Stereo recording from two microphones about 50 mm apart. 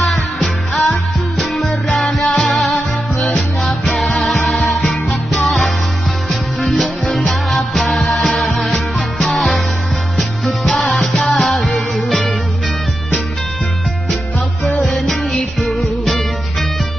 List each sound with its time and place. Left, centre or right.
0.0 s music: centre
6.7 s music: centre
14.6 s music: centre